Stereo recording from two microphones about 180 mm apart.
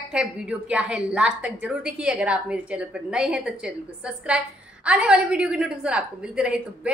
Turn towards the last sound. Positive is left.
turn(degrees=-5)  # may be behind; listen again after turning